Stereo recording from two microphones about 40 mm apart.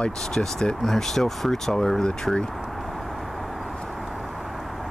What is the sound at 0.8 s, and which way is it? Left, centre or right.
Speech, centre.